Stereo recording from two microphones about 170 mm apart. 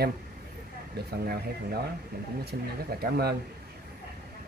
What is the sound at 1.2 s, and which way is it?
Speech, 65° right (ahead or behind).